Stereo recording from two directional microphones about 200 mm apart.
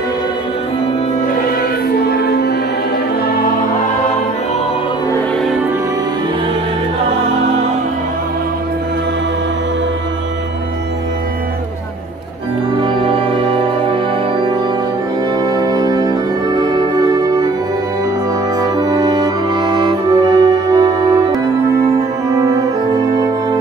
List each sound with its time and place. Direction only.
2.0 s music: 55° left (ahead or behind)
12.8 s music: 25° right (ahead or behind)
15.5 s music: 20° right (ahead or behind)
18.6 s music: 20° right (ahead or behind)